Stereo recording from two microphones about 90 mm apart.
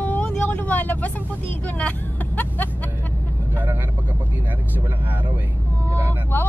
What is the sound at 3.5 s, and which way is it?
Speech, 20° right (ahead or behind).